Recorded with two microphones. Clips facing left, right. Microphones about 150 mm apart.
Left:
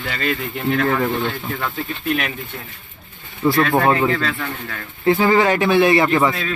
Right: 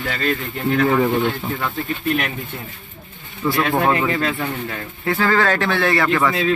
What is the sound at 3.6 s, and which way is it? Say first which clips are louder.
Speech: left 1 dB; 20° right (ahead or behind).